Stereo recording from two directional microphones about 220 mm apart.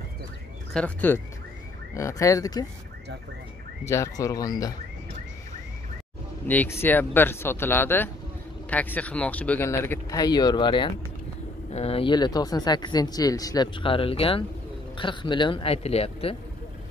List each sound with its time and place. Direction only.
0.7 s speech: 5° left (ahead or behind)
3.8 s speech: 15° left (ahead or behind)
6.4 s speech: 10° left (ahead or behind); by 16.3 s 25° left (ahead or behind)